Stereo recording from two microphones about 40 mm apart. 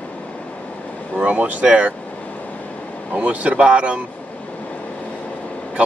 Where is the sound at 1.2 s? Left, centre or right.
Right.